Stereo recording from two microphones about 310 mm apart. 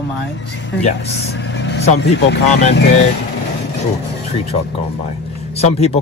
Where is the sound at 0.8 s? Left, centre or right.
Left.